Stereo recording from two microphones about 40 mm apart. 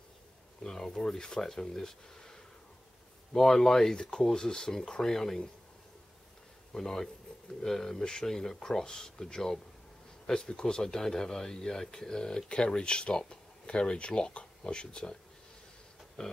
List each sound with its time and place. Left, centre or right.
0.6 s speech: centre
6.7 s speech: centre
16.2 s speech: centre